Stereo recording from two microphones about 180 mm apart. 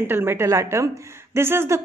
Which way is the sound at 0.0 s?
10° right (ahead or behind).